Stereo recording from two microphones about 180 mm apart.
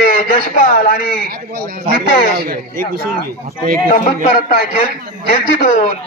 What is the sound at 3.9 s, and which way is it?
Speech, 50° left (ahead or behind).